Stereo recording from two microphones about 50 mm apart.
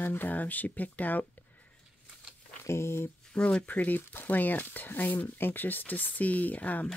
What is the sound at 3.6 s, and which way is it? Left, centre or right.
Speech, left.